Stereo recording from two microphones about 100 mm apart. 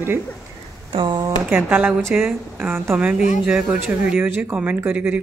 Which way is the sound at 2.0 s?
30° right (ahead or behind).